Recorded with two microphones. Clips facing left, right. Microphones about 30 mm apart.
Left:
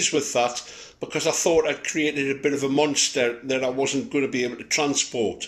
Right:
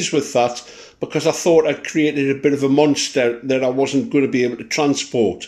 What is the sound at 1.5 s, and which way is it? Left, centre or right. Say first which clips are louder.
Speech: right 7 dB; centre.